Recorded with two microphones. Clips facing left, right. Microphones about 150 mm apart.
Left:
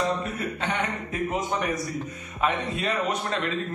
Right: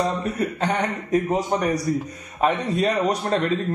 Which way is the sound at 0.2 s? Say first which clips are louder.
Right 6 dB; 40° right (ahead or behind).